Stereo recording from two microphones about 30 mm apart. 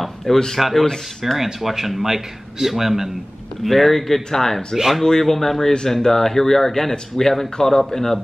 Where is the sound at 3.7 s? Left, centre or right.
Centre.